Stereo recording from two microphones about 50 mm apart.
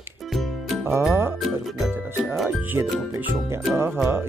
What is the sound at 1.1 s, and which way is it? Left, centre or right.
Speech, right.